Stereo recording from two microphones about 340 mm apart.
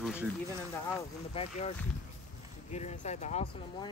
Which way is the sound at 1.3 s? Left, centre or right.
Centre.